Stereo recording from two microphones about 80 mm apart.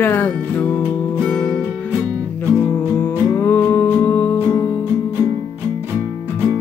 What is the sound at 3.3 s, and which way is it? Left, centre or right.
Music, left.